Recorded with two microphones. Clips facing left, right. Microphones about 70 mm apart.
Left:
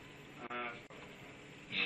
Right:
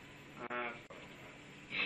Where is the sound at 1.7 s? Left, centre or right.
Right.